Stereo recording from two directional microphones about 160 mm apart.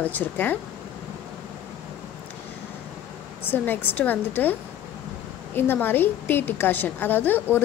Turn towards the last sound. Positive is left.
turn(degrees=10)  # may be behind; listen again after turning